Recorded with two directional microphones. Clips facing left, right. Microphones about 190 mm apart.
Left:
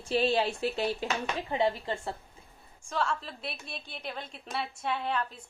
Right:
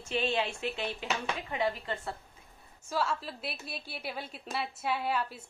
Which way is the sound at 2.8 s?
5° right (ahead or behind).